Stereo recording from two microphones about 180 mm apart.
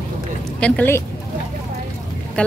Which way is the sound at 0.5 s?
5° left (ahead or behind).